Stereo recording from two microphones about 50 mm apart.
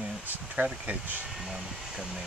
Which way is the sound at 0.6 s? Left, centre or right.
Right.